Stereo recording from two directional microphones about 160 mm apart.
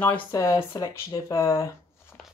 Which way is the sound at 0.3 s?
20° left (ahead or behind).